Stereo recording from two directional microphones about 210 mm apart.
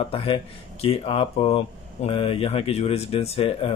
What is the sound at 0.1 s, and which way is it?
Speech, 25° left (ahead or behind).